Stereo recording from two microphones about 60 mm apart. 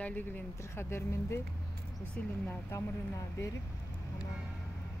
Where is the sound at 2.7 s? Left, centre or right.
Left.